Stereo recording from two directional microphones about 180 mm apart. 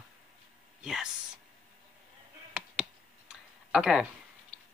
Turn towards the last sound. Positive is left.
turn(degrees=-5)  # may be behind; listen again after turning